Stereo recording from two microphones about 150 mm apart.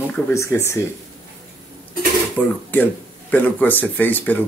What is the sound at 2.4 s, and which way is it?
Speech, 10° left (ahead or behind).